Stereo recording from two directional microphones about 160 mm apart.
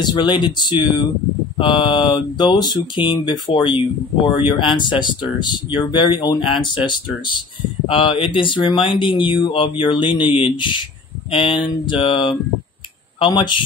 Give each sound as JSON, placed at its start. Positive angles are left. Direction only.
{"t": 0.0, "sound": "speech", "side_deg": 25}